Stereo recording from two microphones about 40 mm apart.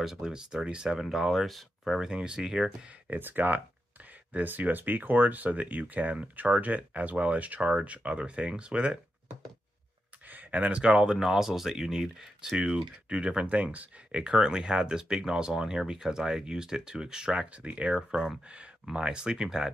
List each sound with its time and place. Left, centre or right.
0.0 s speech: centre
1.0 s speech: centre
2.0 s speech: centre
3.1 s speech: right
10.3 s a sound: right
10.7 s speech: right
13.5 s speech: right
14.2 s speech: right